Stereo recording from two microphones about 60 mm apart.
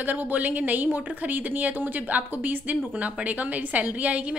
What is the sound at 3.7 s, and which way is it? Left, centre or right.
Speech, right.